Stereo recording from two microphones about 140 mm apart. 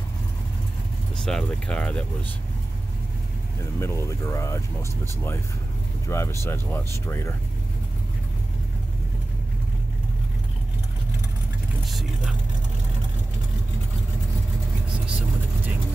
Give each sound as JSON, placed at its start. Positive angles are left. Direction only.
{"t": 1.1, "sound": "speech", "side_deg": 5}
{"t": 3.8, "sound": "speech", "side_deg": 20}
{"t": 11.8, "sound": "speech", "side_deg": 0}